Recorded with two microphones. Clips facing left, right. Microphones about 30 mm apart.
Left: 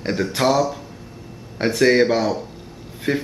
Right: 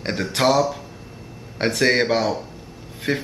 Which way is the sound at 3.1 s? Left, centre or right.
Right.